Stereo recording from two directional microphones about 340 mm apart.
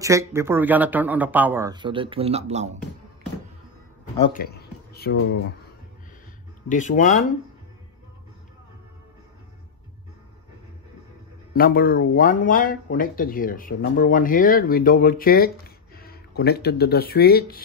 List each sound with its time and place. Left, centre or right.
0.0 s speech: centre
4.3 s a sound: left
6.7 s speech: left
11.5 s speech: left